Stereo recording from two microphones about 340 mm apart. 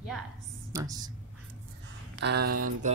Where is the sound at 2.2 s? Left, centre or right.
Right.